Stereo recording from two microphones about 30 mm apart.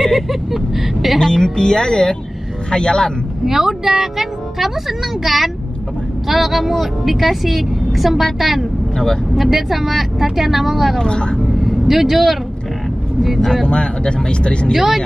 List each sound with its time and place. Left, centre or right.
0.0 s speech: centre
1.2 s speech: centre
3.4 s a woman's voice: centre
8.9 s speech: left
9.3 s a woman's voice: centre
11.0 s speech: left
11.5 s vehicle: centre
13.4 s speech: centre
13.7 s speech: left